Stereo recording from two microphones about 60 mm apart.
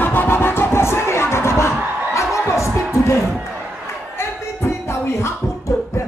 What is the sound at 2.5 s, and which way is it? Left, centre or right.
Music, left.